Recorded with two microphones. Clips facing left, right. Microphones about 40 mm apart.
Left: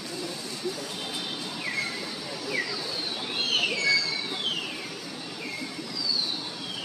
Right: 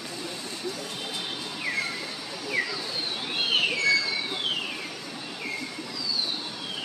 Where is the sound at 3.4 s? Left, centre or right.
Centre.